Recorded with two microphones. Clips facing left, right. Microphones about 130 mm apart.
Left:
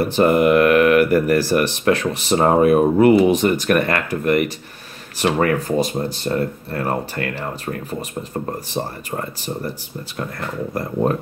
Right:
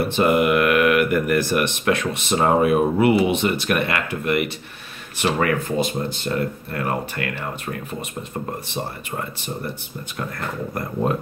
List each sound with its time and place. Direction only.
0.1 s speech: 35° left (ahead or behind)